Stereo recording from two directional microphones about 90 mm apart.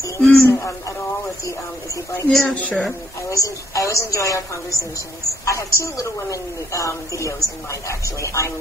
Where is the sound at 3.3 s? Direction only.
40° left (ahead or behind).